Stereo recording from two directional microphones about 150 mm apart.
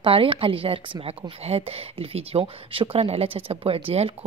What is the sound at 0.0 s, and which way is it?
A woman's voice, 35° right (ahead or behind).